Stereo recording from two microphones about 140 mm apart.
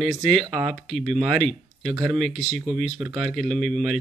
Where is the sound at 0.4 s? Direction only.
45° right (ahead or behind).